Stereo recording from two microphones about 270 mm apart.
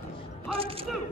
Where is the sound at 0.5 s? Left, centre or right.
Right.